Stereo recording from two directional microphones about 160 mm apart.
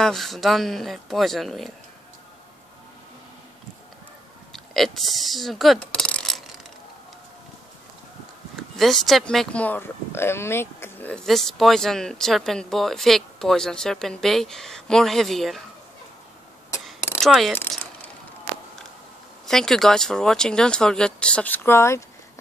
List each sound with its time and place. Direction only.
0.0 s speech: centre (ahead or behind)
4.5 s speech: centre (ahead or behind)
8.7 s speech: centre (ahead or behind)
17.2 s speech: centre (ahead or behind)
19.4 s speech: 5° left (ahead or behind)